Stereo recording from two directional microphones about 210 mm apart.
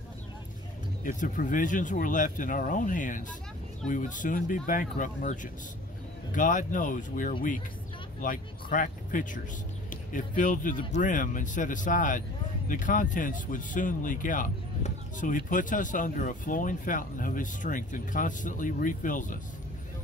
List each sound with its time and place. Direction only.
1.0 s speech: 40° left (ahead or behind)